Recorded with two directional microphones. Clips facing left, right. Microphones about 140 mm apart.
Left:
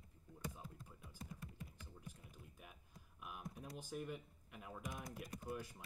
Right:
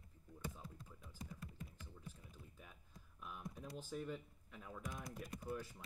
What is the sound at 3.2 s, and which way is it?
Speech, 10° left (ahead or behind).